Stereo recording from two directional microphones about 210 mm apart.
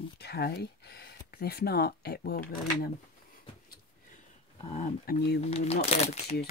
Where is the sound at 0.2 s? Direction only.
50° left (ahead or behind).